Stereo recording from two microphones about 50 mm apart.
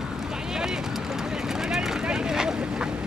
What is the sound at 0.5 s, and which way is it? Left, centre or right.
Vehicle, centre.